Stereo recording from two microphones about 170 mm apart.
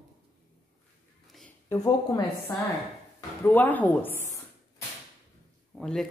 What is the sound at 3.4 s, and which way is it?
Speech, 10° left (ahead or behind).